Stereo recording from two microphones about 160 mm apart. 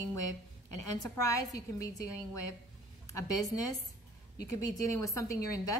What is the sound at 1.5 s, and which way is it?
Speech, 20° left (ahead or behind).